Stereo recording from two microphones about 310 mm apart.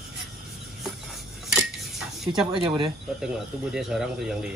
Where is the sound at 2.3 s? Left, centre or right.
Centre.